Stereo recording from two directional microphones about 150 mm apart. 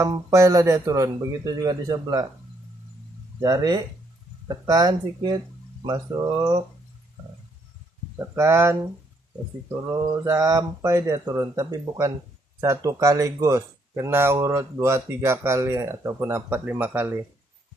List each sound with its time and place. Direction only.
0.0 s speech: 20° right (ahead or behind)
3.3 s speech: 25° right (ahead or behind)
8.2 s speech: 20° right (ahead or behind)
9.9 s speech: 20° right (ahead or behind)